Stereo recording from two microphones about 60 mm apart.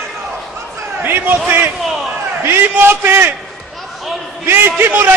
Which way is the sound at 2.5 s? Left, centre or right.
Right.